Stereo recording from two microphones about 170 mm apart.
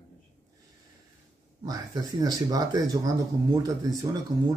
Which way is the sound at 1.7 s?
20° right (ahead or behind).